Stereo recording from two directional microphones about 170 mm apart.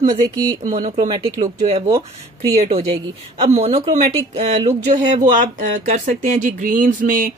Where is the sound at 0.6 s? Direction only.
45° right (ahead or behind).